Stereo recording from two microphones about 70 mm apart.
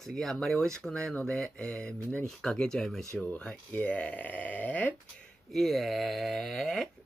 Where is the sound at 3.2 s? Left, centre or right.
Left.